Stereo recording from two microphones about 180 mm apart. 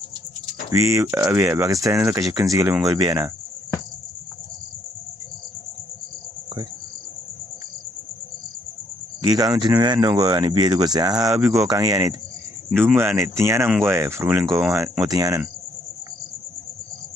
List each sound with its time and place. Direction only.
0.7 s speech: 15° right (ahead or behind)
9.2 s speech: 20° right (ahead or behind)